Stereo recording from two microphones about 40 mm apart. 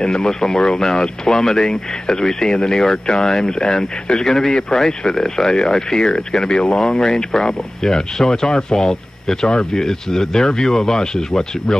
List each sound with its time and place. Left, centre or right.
0.0 s speech: centre